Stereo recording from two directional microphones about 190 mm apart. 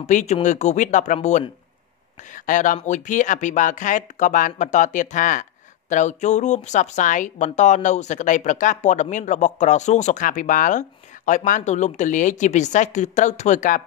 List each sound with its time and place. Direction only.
0.0 s speech: 40° left (ahead or behind)